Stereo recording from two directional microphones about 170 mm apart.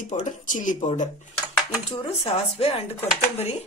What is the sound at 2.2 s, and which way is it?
Speech, 35° left (ahead or behind).